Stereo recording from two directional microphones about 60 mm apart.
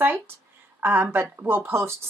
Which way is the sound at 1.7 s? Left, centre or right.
Right.